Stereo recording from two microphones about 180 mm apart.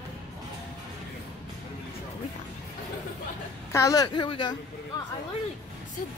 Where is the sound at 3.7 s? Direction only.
15° left (ahead or behind).